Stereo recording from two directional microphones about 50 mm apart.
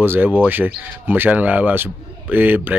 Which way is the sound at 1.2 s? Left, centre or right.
Right.